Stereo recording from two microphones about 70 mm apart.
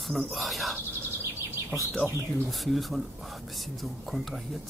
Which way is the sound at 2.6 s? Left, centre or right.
Centre.